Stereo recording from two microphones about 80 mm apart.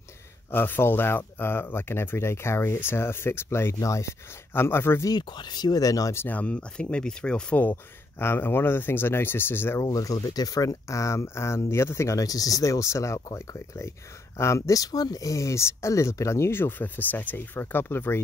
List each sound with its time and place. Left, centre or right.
0.5 s speech: left
5.0 s speech: left
6.1 s speech: left
7.7 s speech: left
9.8 s speech: left